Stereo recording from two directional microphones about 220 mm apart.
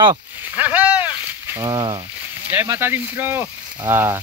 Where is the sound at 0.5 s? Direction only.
5° right (ahead or behind).